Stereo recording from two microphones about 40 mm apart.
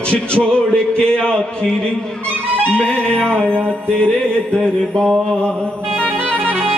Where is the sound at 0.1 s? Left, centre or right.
Left.